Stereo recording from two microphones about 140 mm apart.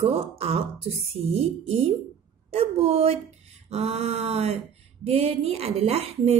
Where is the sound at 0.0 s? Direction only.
45° right (ahead or behind).